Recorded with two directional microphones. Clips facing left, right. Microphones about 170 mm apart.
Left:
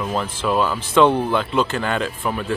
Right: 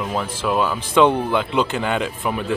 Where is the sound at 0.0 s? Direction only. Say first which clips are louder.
Even; 10° right (ahead or behind).